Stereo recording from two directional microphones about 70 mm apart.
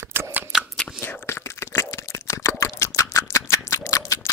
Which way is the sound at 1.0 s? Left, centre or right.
Left.